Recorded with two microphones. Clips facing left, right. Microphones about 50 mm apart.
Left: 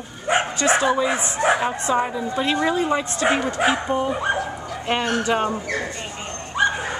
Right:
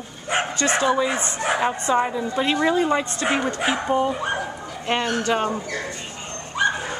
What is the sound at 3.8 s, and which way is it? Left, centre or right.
Speech, centre.